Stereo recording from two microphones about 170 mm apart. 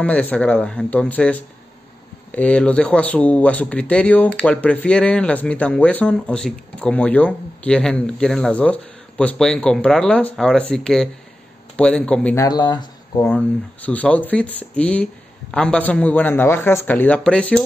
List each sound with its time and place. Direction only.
0.0 s speech: 10° left (ahead or behind)
12.4 s speech: 25° left (ahead or behind)
13.3 s speech: 10° left (ahead or behind)